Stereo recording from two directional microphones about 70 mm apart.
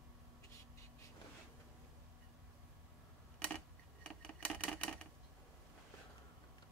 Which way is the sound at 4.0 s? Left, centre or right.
Centre.